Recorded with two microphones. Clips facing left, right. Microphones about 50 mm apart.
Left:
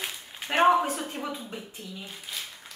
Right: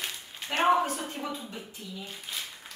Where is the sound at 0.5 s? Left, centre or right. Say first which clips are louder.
Left 3 dB; left.